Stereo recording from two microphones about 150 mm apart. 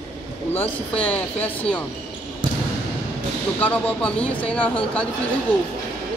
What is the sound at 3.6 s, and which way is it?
A woman's voice, 10° left (ahead or behind).